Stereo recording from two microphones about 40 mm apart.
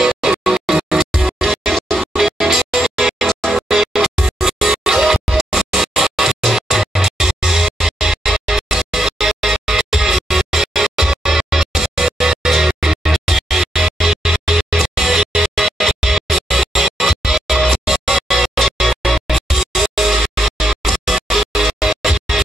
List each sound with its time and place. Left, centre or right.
0.0 s music: centre